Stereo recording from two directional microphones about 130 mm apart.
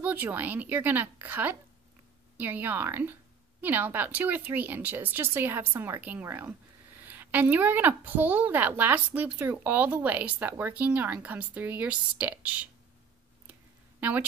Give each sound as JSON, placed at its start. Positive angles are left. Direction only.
{"t": 0.0, "sound": "speech", "side_deg": -15}
{"t": 13.9, "sound": "speech", "side_deg": -15}